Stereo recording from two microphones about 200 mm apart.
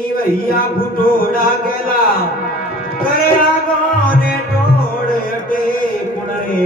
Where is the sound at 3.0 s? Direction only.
50° left (ahead or behind).